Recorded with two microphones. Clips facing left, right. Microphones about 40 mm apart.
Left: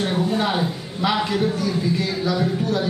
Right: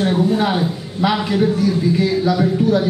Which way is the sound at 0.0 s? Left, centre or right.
Centre.